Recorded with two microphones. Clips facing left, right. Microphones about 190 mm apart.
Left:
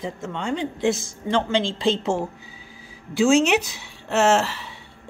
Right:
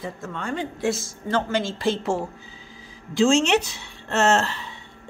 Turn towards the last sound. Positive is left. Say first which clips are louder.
# left 2 dB
turn(degrees=10)  # may be behind; listen again after turning